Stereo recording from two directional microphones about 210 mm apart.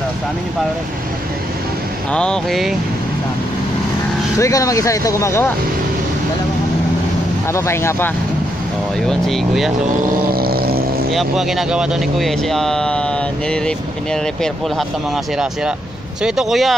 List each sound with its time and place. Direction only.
2.1 s speech: 5° left (ahead or behind)
4.4 s speech: 15° left (ahead or behind)
7.5 s speech: 15° left (ahead or behind)
9.0 s speech: centre (ahead or behind)
10.3 s vehicle: 45° right (ahead or behind)
11.1 s speech: centre (ahead or behind)
16.2 s speech: 5° right (ahead or behind)